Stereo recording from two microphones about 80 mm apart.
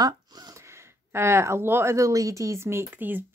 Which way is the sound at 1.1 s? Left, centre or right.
Right.